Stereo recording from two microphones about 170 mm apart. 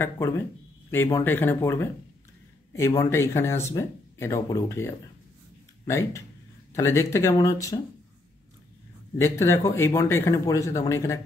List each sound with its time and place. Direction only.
0.0 s speech: 15° left (ahead or behind)
9.2 s speech: 15° left (ahead or behind)